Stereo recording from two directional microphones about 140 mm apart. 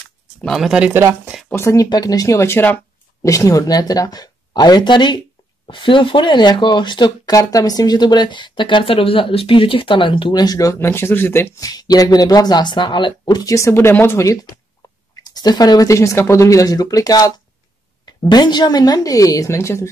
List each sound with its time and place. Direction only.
0.4 s speech: centre (ahead or behind)
0.9 s speech: 15° right (ahead or behind)
1.5 s speech: 20° left (ahead or behind)
18.3 s speech: 30° left (ahead or behind)